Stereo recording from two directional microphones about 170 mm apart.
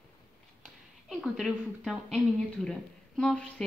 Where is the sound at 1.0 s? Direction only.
Centre (ahead or behind).